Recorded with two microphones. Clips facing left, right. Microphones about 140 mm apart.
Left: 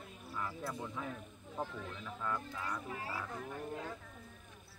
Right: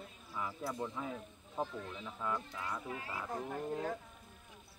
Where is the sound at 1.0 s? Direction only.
10° right (ahead or behind).